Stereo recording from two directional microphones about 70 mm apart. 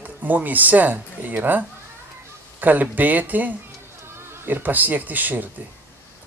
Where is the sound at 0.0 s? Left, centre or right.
Right.